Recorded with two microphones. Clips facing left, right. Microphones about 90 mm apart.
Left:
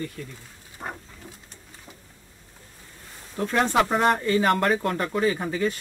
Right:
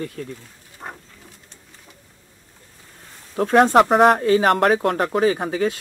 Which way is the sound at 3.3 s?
65° right (ahead or behind).